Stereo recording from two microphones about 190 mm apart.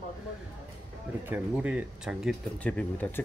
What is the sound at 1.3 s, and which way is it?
Speech, 10° right (ahead or behind).